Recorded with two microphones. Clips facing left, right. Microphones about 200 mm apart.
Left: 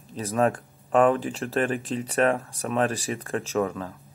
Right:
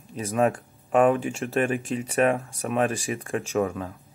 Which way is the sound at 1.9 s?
10° right (ahead or behind).